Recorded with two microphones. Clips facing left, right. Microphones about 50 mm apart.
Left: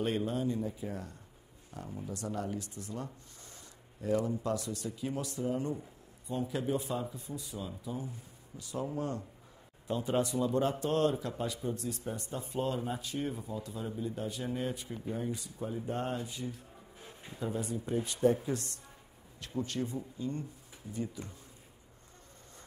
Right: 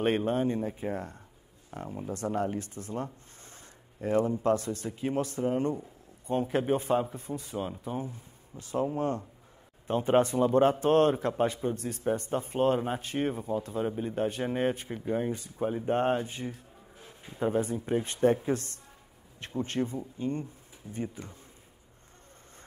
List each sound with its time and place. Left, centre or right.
0.0 s a man's voice: right